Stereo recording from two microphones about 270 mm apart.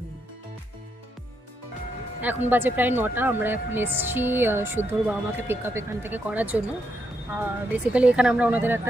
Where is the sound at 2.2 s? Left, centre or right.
Centre.